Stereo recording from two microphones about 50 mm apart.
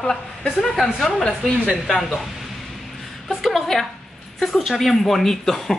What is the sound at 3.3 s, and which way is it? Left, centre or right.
Speech, centre.